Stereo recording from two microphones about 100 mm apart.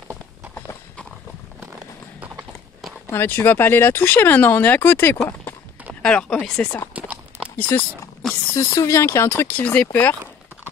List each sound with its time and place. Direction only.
3.1 s speech: 20° left (ahead or behind)
8.5 s speech: 30° left (ahead or behind)